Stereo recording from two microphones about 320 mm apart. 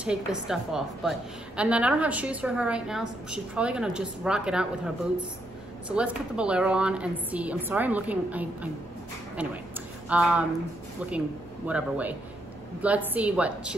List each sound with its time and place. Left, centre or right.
0.0 s a woman's voice: centre